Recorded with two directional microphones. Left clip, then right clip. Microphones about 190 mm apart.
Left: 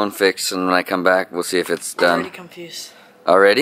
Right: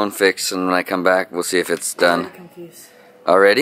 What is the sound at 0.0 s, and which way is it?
Speech, centre (ahead or behind).